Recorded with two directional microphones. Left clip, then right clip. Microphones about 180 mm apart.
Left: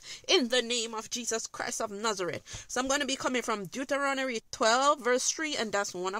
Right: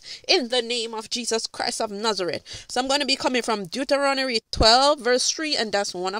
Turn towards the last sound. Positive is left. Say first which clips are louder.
# right 6 dB
turn(degrees=-20)  # may be behind; listen again after turning